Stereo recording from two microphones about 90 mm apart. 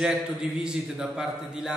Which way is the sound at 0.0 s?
10° right (ahead or behind).